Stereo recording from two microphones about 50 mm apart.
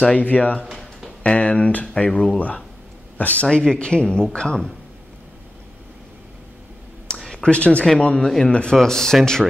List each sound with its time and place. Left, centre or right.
0.2 s speech: left
2.0 s speech: centre
2.3 s speech: left
3.5 s speech: centre
7.2 s a sound: centre
7.4 s speech: left